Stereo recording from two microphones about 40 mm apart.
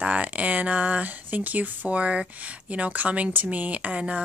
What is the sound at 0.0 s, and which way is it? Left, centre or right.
Speech, right.